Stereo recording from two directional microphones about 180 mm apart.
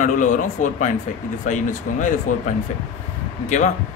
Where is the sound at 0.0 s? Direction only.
45° left (ahead or behind).